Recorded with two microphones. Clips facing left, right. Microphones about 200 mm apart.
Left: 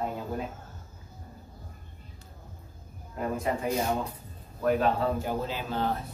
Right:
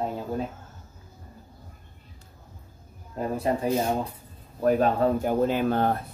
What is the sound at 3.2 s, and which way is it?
Speech, 35° right (ahead or behind).